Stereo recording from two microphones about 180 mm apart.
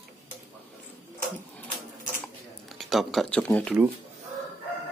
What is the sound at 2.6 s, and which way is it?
Speech, centre (ahead or behind).